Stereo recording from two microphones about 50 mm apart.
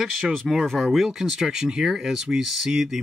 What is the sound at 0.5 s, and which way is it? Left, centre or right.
Speech, centre.